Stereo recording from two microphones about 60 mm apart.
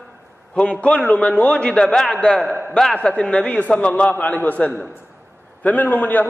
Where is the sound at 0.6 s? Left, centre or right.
Centre.